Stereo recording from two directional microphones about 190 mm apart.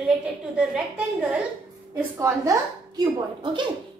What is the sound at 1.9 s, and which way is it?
A woman's voice, 15° right (ahead or behind).